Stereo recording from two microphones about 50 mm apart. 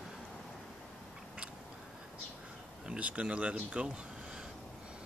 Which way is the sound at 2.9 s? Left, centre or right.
Right.